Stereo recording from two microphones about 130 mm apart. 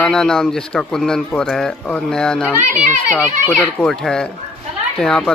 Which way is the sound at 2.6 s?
75° right (ahead or behind).